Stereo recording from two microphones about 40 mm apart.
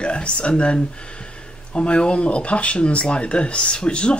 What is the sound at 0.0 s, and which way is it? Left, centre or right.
Speech, left.